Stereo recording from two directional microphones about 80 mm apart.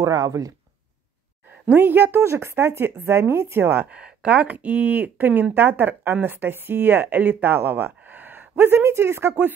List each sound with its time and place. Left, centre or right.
0.0 s speech: right
1.7 s speech: right
3.6 s speech: right